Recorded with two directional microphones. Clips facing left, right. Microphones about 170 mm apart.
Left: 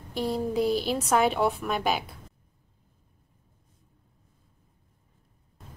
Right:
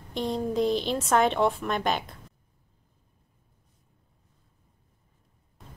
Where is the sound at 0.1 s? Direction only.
10° left (ahead or behind).